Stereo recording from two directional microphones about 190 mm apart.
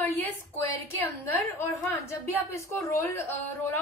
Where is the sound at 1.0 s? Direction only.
10° left (ahead or behind).